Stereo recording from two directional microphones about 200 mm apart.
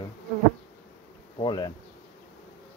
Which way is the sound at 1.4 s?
20° left (ahead or behind).